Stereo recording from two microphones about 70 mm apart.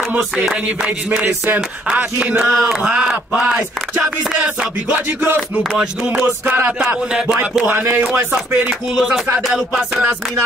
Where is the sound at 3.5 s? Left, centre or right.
Centre.